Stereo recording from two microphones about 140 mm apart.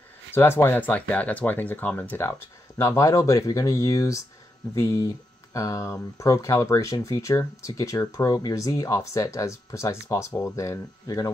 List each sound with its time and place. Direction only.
0.3 s speech: 15° left (ahead or behind)